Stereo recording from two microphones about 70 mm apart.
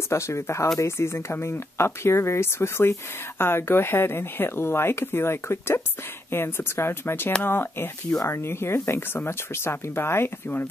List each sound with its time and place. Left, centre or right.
0.1 s speech: left